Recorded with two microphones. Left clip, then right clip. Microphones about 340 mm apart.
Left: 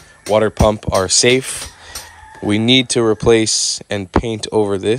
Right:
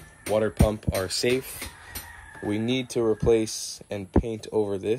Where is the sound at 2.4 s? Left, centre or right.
Left.